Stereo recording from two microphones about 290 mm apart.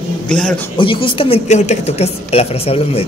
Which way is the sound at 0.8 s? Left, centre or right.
Centre.